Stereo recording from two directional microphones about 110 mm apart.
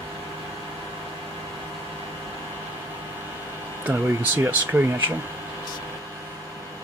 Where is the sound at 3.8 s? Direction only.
20° right (ahead or behind).